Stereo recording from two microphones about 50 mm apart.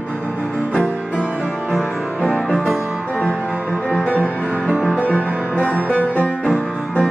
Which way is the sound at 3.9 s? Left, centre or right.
Left.